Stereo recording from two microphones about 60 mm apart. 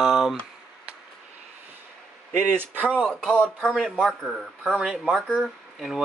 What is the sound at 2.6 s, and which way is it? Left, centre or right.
Speech, right.